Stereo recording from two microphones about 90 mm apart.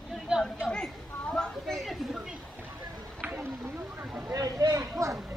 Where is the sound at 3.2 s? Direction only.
15° right (ahead or behind).